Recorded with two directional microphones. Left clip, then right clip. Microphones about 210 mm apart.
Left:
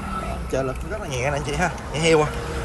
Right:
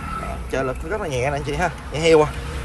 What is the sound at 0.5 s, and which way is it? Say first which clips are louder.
Speech: right 3 dB; 15° left (ahead or behind).